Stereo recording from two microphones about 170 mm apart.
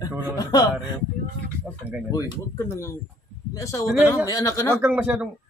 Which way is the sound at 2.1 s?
15° left (ahead or behind).